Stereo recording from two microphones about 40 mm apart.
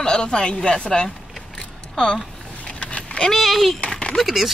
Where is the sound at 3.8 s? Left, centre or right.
Centre.